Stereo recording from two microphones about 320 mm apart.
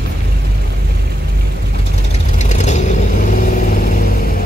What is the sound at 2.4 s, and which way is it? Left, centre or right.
Vehicle, left.